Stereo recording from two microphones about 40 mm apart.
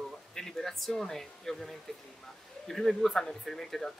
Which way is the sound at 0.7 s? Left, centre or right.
Centre.